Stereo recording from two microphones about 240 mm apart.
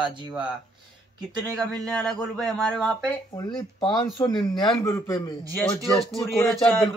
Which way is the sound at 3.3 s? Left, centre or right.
Centre.